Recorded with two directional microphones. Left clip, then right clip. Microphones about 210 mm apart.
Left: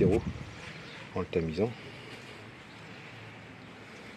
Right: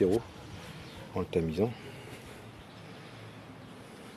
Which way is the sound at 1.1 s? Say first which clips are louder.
Even; 5° right (ahead or behind).